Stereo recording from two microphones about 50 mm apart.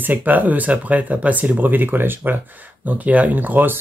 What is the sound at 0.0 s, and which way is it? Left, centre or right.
Speech, right.